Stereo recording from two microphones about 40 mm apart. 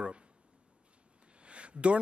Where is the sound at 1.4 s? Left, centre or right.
Right.